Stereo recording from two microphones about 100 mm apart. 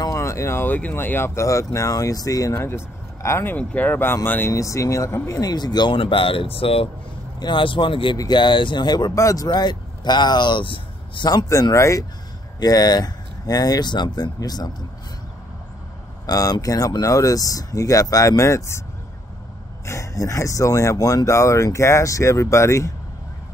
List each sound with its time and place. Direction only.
0.0 s speech: 30° left (ahead or behind)
2.5 s speech: 25° left (ahead or behind); by 6.9 s 70° left (ahead or behind)
7.3 s speech: 50° left (ahead or behind)
9.1 s speech: 35° left (ahead or behind); by 11.2 s 55° left (ahead or behind)
11.2 s speech: 35° left (ahead or behind)
16.3 s speech: 35° left (ahead or behind)
19.9 s speech: 30° left (ahead or behind)